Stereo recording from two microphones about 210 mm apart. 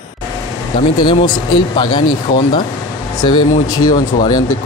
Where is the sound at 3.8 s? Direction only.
20° left (ahead or behind).